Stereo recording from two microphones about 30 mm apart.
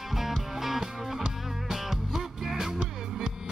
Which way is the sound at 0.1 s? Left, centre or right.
Centre.